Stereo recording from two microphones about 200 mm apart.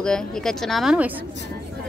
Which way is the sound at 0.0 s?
5° left (ahead or behind).